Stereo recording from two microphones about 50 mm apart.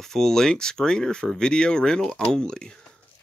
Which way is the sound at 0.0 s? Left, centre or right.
Centre.